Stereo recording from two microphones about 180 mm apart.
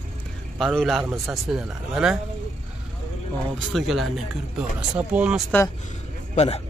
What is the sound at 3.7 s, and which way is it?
Speech, centre (ahead or behind).